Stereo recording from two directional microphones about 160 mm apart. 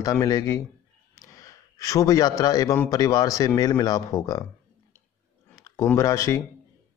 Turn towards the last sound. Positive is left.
turn(degrees=15)  # may be behind; listen again after turning